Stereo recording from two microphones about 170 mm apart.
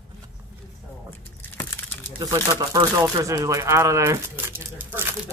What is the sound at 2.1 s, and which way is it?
Speech, 20° right (ahead or behind).